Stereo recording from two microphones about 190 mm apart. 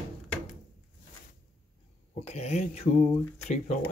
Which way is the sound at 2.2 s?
35° left (ahead or behind).